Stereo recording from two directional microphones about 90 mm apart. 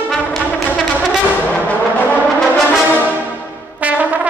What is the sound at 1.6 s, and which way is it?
Brass instrument, 15° left (ahead or behind).